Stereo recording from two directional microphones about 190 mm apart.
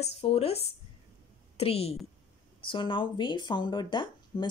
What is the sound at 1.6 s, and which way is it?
Speech, 30° left (ahead or behind).